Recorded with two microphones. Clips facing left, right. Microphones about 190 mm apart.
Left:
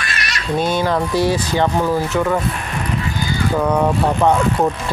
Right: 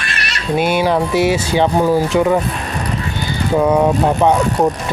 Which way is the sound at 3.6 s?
15° right (ahead or behind).